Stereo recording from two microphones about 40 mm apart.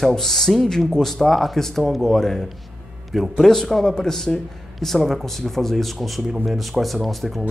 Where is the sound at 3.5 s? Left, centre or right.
Centre.